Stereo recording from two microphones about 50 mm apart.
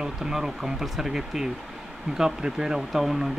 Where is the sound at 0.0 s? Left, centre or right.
Centre.